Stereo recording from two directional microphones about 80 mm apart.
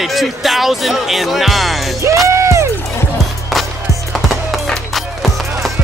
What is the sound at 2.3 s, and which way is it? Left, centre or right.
Music, right.